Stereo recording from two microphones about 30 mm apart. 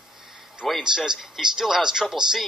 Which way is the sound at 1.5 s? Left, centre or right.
Centre.